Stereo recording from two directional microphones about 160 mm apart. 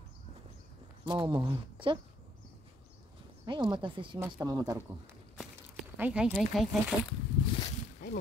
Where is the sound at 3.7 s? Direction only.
30° right (ahead or behind).